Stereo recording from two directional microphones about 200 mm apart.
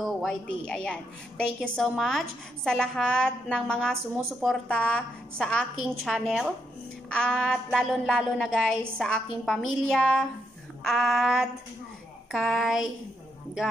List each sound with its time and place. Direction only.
0.0 s a woman's voice: centre (ahead or behind)